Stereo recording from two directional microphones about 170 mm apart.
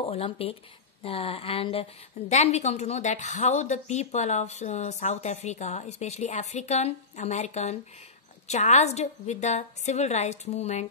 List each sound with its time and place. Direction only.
0.0 s a woman's voice: 35° left (ahead or behind)